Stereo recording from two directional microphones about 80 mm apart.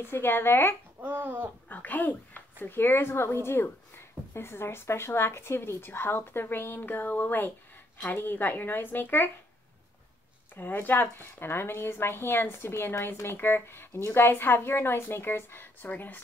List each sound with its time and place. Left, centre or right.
0.0 s a woman's voice: left
1.0 s speech: right
1.7 s a woman's voice: left
10.5 s a woman's voice: left